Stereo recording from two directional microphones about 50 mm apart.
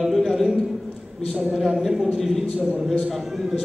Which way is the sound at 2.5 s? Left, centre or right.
Right.